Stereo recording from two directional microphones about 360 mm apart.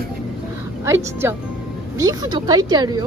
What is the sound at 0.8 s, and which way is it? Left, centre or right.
Speech, centre.